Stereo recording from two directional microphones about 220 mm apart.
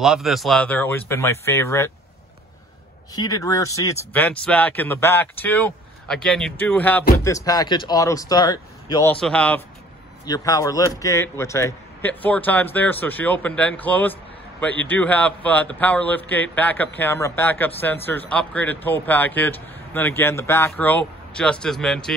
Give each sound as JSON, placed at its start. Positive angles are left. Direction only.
{"t": 0.0, "sound": "speech", "side_deg": 0}
{"t": 3.2, "sound": "speech", "side_deg": 15}
{"t": 9.1, "sound": "a man's voice", "side_deg": 5}
{"t": 10.2, "sound": "speech", "side_deg": 15}